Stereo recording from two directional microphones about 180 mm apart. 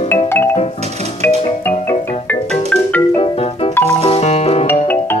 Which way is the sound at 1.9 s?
10° left (ahead or behind).